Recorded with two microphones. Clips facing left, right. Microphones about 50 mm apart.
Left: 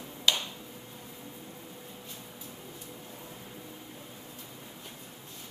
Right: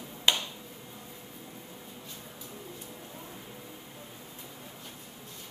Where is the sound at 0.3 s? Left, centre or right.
Right.